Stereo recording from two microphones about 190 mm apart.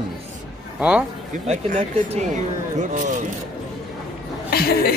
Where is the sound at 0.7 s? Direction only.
5° right (ahead or behind).